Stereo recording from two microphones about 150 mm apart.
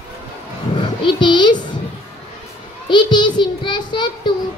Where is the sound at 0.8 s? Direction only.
35° left (ahead or behind).